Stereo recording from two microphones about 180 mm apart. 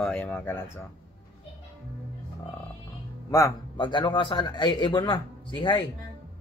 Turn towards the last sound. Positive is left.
turn(degrees=25)  # may be behind; listen again after turning